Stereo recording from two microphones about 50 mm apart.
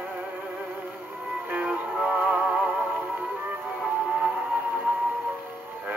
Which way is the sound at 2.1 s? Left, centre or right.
Right.